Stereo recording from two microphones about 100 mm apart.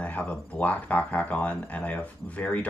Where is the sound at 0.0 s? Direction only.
15° left (ahead or behind).